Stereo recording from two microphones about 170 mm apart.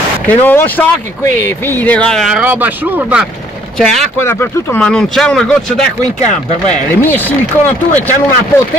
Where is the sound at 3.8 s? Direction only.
5° left (ahead or behind).